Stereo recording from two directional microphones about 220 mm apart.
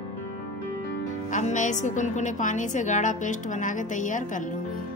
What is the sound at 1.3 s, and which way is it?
Music, 35° left (ahead or behind).